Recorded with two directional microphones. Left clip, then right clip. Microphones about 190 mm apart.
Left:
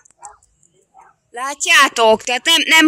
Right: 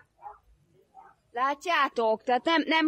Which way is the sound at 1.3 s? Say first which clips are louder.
Left 12 dB; 10° right (ahead or behind).